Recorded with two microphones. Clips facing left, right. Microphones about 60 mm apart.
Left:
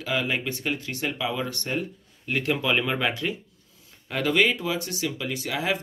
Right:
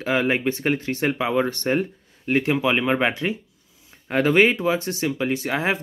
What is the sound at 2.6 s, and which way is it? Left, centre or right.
Speech, right.